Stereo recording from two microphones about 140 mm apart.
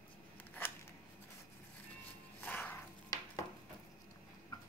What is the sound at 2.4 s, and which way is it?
Music, 15° left (ahead or behind).